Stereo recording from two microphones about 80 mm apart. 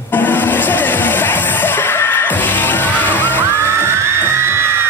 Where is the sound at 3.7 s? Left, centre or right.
Right.